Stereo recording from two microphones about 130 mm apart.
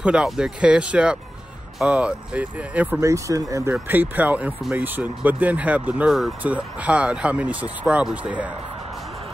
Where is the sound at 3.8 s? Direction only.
15° right (ahead or behind).